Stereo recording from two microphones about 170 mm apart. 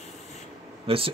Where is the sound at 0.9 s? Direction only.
35° right (ahead or behind).